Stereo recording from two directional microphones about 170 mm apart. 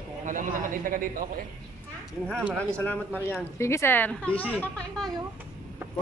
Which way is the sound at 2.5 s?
5° left (ahead or behind).